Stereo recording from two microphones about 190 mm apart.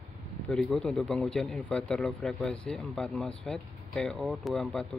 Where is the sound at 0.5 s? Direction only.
5° left (ahead or behind).